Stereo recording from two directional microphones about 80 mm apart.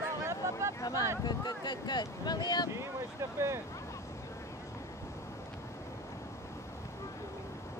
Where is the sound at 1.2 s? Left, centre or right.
Left.